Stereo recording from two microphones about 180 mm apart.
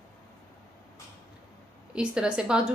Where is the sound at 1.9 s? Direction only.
5° right (ahead or behind).